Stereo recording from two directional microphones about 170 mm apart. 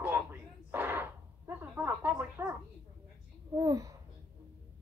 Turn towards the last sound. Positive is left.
turn(degrees=-20)  # may be behind; listen again after turning